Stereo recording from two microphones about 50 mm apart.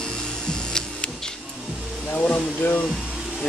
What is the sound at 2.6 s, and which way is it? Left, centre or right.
Speech, left.